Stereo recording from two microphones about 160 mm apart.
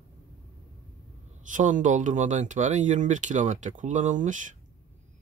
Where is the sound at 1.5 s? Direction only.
50° right (ahead or behind).